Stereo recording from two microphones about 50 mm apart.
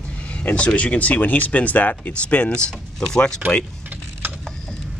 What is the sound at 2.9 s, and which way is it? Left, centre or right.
Speech, centre.